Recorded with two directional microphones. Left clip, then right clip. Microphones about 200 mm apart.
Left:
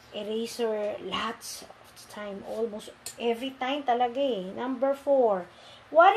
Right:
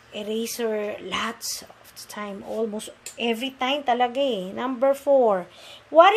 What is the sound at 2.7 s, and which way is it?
A woman's voice, 45° right (ahead or behind).